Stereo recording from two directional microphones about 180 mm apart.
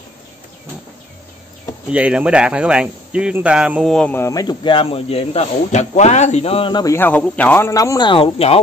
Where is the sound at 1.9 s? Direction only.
5° right (ahead or behind).